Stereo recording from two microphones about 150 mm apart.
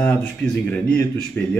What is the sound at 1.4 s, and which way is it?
Speech, 10° left (ahead or behind).